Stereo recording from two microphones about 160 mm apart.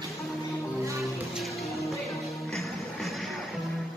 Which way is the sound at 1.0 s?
Centre (ahead or behind).